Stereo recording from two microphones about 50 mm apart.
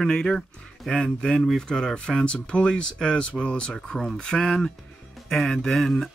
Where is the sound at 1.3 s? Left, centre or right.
Centre.